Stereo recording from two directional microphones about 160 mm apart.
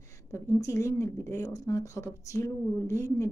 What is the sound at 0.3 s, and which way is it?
Speech, 15° left (ahead or behind).